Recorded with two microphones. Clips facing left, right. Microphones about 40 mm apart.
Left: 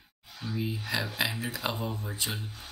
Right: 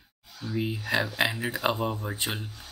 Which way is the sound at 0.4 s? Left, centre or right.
Left.